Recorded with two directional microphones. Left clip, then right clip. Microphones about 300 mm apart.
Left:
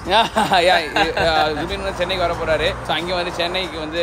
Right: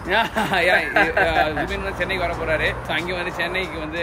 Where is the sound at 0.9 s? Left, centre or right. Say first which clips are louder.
Even; centre.